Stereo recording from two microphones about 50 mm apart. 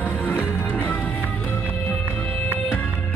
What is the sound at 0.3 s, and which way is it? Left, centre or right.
Music, left.